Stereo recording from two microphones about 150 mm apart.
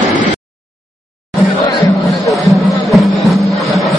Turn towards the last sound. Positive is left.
turn(degrees=0)  # may be behind; listen again after turning